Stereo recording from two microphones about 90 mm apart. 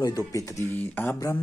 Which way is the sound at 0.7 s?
20° left (ahead or behind).